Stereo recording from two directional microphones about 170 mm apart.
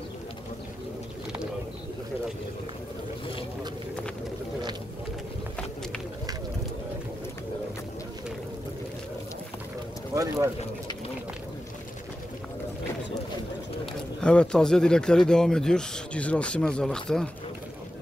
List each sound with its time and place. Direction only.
10.1 s speech: 20° right (ahead or behind)
14.2 s speech: 5° left (ahead or behind)